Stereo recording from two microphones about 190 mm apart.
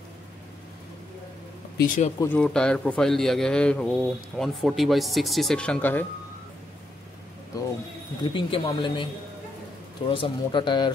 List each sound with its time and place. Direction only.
1.8 s speech: 40° left (ahead or behind)
2.1 s a man's voice: 10° left (ahead or behind)
8.2 s a man's voice: 25° left (ahead or behind)